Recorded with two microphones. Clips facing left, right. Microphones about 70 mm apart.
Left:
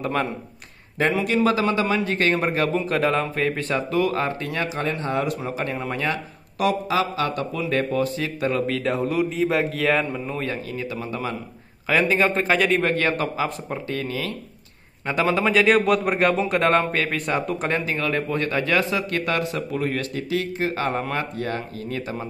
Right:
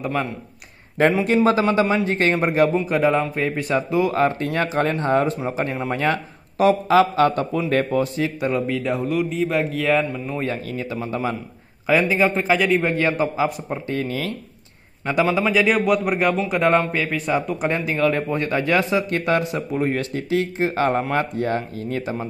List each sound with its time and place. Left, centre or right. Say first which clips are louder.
0.0 s a man's voice: even; centre
1.2 s speech: right 3 dB; right
2.7 s a man's voice: right 3 dB; centre
10.8 s speech: right 3 dB; right
12.1 s a man's voice: right 1 dB; centre
12.9 s speech: right 2 dB; centre
13.8 s speech: right 3 dB; right
15.4 s a man's voice: even; centre
17.7 s speech: right 6 dB; right